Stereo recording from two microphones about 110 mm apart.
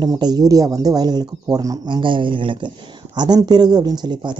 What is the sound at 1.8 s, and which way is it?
A man's voice, 45° right (ahead or behind).